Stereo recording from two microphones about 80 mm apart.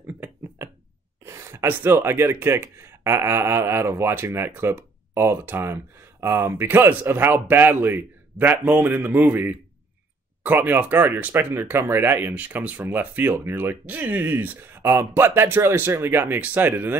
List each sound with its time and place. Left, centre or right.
1.2 s speech: right